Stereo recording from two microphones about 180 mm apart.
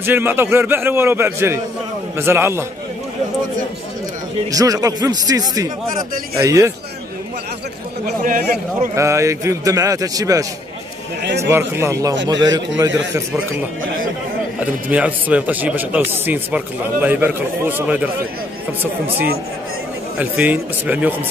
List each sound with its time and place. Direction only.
0.0 s speech: 10° right (ahead or behind)
4.5 s speech: 20° right (ahead or behind)
8.2 s a man's voice: 45° right (ahead or behind)
8.9 s speech: 15° right (ahead or behind)
11.4 s speech: 15° right (ahead or behind)
14.6 s speech: 10° right (ahead or behind)
20.2 s speech: 10° right (ahead or behind)